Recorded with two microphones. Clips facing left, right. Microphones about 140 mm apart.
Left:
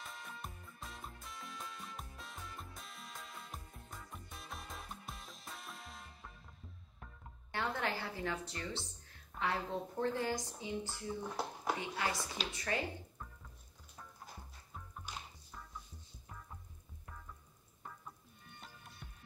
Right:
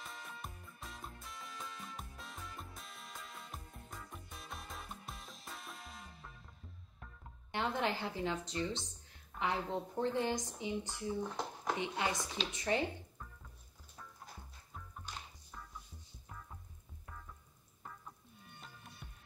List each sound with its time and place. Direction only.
0.0 s music: centre (ahead or behind)
7.5 s a woman's voice: 20° right (ahead or behind)
11.2 s a sound: 5° left (ahead or behind)
11.8 s a woman's voice: 20° right (ahead or behind)
15.1 s music: 10° left (ahead or behind)
19.0 s music: centre (ahead or behind)